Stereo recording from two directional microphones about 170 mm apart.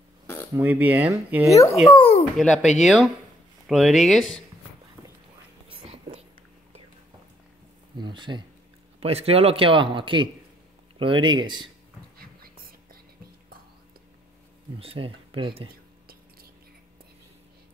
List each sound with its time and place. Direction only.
0.6 s speech: 10° right (ahead or behind)
1.5 s a child's voice: 20° left (ahead or behind)
1.9 s a sound: 30° left (ahead or behind)
2.3 s speech: centre (ahead or behind)
5.7 s whispering: 35° right (ahead or behind)
8.0 s a man's voice: 25° right (ahead or behind)
12.2 s whispering: 60° right (ahead or behind)
14.8 s a man's voice: 30° right (ahead or behind)